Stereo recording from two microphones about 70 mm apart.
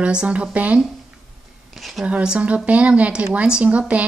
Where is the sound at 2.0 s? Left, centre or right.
Centre.